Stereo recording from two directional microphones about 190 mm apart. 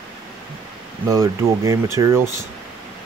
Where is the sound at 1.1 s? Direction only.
15° right (ahead or behind).